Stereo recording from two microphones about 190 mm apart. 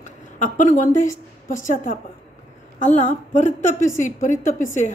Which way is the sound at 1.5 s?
45° left (ahead or behind).